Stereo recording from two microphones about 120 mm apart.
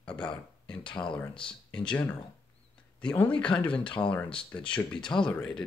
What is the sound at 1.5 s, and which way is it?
Speech, 10° left (ahead or behind).